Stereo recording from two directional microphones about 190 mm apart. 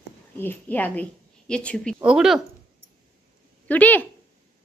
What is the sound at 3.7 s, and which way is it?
Speech, 10° left (ahead or behind).